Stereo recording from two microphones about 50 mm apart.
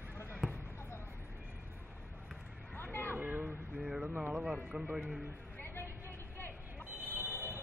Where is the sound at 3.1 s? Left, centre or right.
Right.